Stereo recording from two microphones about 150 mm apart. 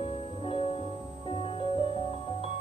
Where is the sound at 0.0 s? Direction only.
40° left (ahead or behind).